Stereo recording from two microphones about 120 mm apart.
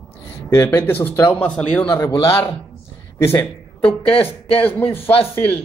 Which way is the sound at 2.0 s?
25° left (ahead or behind).